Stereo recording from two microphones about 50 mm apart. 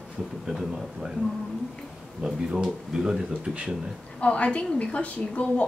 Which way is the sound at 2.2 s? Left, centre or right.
Centre.